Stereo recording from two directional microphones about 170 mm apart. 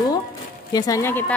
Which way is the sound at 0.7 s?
20° left (ahead or behind).